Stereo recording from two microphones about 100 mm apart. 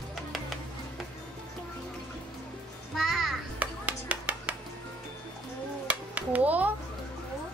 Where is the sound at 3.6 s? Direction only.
15° right (ahead or behind).